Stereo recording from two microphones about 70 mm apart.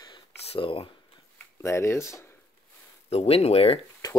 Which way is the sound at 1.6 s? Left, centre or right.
Left.